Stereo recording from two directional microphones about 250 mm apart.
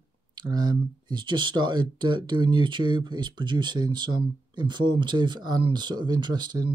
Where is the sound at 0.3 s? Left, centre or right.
Centre.